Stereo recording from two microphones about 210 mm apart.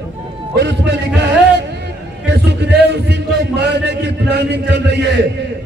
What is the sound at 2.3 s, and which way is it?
A man's voice, 55° right (ahead or behind).